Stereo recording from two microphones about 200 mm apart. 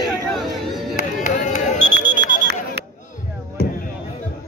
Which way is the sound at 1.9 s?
45° right (ahead or behind).